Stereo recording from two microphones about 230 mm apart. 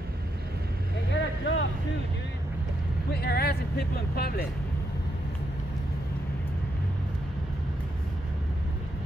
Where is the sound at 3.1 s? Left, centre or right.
Left.